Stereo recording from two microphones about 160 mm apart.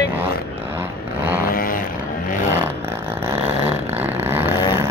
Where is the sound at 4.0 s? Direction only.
15° right (ahead or behind).